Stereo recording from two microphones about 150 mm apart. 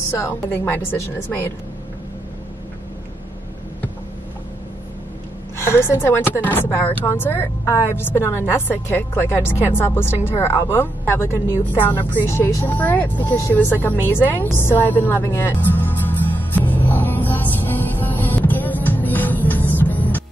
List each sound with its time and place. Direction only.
0.1 s a woman's voice: 15° left (ahead or behind)
5.6 s a woman's voice: 15° left (ahead or behind)
15.9 s music: 10° left (ahead or behind)